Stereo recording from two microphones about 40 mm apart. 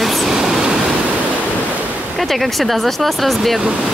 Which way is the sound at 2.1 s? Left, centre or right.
Centre.